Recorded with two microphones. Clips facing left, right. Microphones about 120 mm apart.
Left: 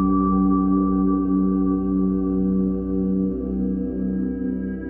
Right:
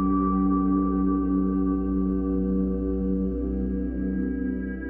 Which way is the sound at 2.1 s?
25° left (ahead or behind).